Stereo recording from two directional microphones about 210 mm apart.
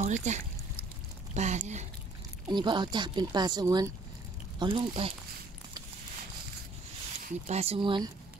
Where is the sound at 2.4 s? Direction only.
20° right (ahead or behind).